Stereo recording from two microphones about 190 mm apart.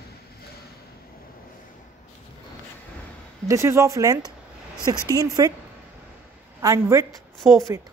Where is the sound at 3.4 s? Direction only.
15° right (ahead or behind).